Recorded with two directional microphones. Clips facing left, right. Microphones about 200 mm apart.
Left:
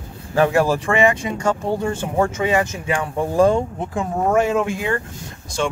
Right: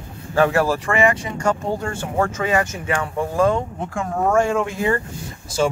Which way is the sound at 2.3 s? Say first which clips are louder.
Left 1 dB; 20° left (ahead or behind).